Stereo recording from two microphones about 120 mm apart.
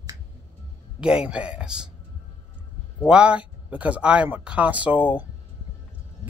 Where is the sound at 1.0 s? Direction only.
10° right (ahead or behind).